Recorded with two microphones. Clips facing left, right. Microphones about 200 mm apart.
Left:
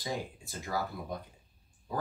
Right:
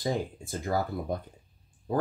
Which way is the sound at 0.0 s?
50° right (ahead or behind).